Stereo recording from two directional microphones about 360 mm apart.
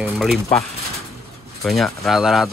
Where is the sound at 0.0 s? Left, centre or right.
Centre.